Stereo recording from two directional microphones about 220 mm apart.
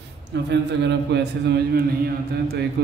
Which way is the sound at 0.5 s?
50° right (ahead or behind).